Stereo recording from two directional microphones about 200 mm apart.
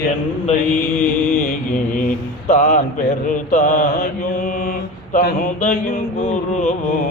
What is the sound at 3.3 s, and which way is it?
Mantra, 40° left (ahead or behind).